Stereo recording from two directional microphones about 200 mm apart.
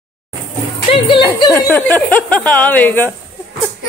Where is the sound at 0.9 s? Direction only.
25° left (ahead or behind).